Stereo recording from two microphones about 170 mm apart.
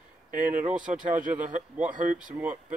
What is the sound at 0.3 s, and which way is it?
Speech, 50° right (ahead or behind).